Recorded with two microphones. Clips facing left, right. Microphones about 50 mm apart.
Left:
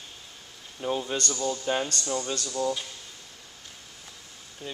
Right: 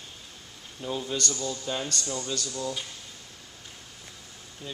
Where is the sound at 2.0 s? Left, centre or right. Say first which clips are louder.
Left 4 dB; centre.